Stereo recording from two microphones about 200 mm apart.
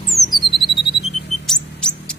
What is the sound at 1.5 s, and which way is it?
Mouse, centre (ahead or behind).